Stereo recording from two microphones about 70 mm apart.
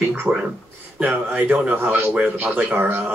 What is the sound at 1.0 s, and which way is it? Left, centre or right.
Speech, centre.